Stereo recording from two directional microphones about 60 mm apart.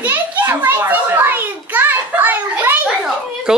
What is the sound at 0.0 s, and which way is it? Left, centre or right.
Children playing, right.